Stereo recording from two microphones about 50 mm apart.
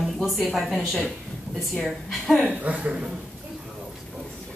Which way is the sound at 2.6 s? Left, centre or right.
Right.